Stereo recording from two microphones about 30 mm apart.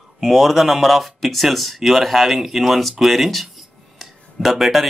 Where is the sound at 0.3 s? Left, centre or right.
Centre.